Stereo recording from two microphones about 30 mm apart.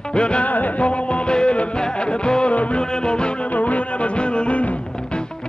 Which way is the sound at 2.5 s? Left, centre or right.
Left.